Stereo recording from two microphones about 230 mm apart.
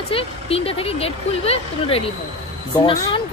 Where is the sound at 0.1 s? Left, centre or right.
Left.